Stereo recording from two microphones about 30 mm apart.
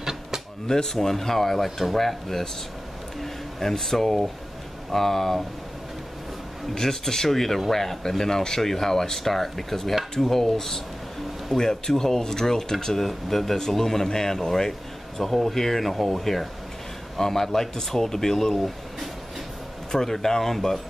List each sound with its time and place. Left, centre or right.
0.7 s a man's voice: centre
6.7 s a man's voice: centre
19.9 s a man's voice: centre